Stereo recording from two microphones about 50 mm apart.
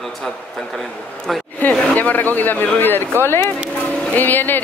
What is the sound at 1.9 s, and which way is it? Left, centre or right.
A man's voice, left.